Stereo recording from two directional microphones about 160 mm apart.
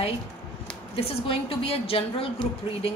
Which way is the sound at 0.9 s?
35° left (ahead or behind).